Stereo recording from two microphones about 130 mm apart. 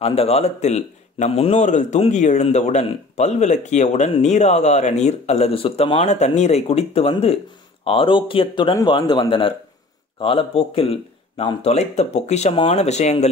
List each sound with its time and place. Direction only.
0.0 s a man's voice: 50° left (ahead or behind)
6.1 s a man's voice: 60° left (ahead or behind)